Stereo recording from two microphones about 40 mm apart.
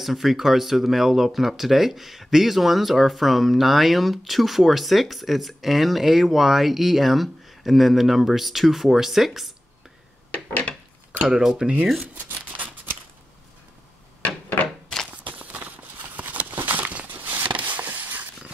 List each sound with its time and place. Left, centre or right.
0.0 s speech: centre
10.3 s wood: left
11.2 s speech: centre
15.2 s a sound: right
17.5 s vehicle: right